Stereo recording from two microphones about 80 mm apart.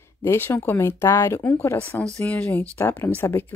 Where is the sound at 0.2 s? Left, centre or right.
Left.